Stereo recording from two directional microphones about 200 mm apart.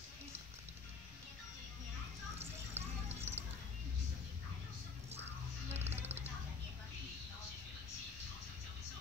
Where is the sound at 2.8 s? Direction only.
10° right (ahead or behind).